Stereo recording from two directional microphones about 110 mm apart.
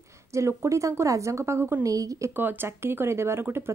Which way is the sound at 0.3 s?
25° right (ahead or behind).